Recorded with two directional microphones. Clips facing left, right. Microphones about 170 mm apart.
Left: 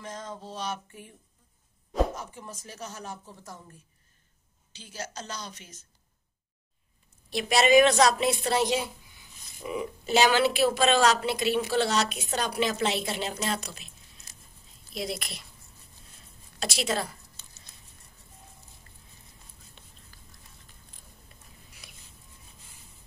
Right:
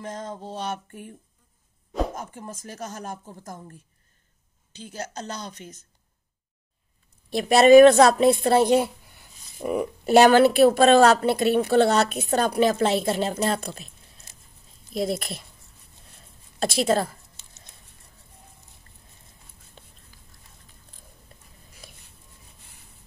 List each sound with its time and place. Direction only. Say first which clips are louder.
0.0 s a woman's voice: right 5 dB; 50° right (ahead or behind)
2.1 s a woman's voice: right 4 dB; 50° right (ahead or behind)
4.7 s a woman's voice: right 5 dB; 55° right (ahead or behind)
7.2 s a woman's voice: right 8 dB; 50° right (ahead or behind)
15.0 s a woman's voice: right 8 dB; 50° right (ahead or behind)
16.5 s a woman's voice: right 8 dB; 50° right (ahead or behind)
17.4 s a sound: even; 25° right (ahead or behind)
21.8 s a sound: right 8 dB; 50° right (ahead or behind)